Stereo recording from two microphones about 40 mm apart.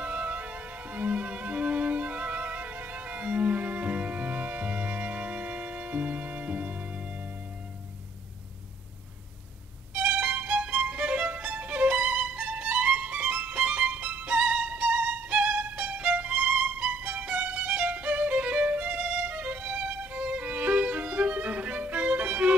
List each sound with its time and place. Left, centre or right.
0.0 s music: right
9.9 s violin: right
12.3 s music: right
14.5 s violin: right